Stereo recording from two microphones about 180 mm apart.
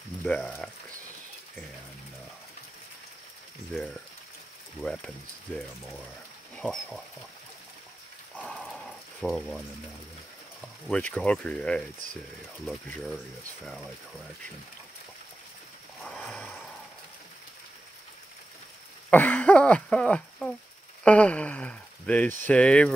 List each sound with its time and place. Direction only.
0.3 s speech: 10° left (ahead or behind)
4.8 s speech: 5° left (ahead or behind)
6.5 s a sound: 5° left (ahead or behind)
8.4 s dog: centre (ahead or behind)
10.9 s speech: 10° left (ahead or behind)
16.0 s a sound: 5° left (ahead or behind)
19.0 s throat clearing: 10° left (ahead or behind)
21.0 s a sound: 5° left (ahead or behind)
22.4 s speech: 5° left (ahead or behind)